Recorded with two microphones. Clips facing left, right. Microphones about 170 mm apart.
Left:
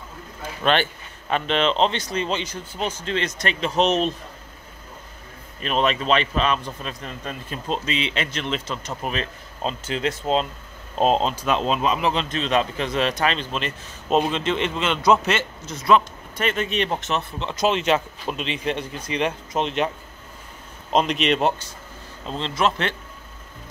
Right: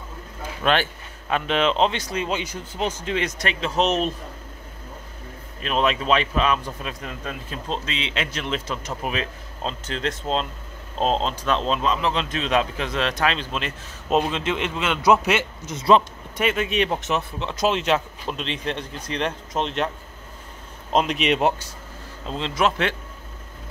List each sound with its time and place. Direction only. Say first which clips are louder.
0.7 s a man's voice: left 1 dB; 5° right (ahead or behind)
5.6 s a man's voice: even; centre (ahead or behind)
9.6 s speech: left 3 dB; 5° left (ahead or behind)
12.2 s a man's voice: even; 5° right (ahead or behind)
20.9 s speech: left 1 dB; 5° right (ahead or behind)